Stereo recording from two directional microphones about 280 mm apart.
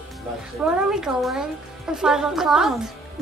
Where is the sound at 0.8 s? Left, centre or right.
Centre.